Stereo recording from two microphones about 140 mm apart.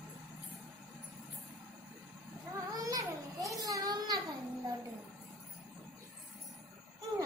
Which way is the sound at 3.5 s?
25° right (ahead or behind).